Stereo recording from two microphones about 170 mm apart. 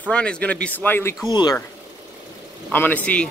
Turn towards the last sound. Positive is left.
turn(degrees=10)  # may be behind; listen again after turning